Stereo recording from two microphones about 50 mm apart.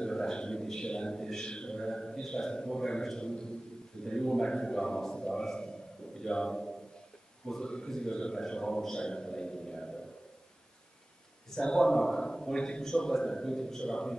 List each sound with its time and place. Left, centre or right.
0.0 s a sound: centre
6.2 s a man's voice: centre
11.5 s a man's voice: centre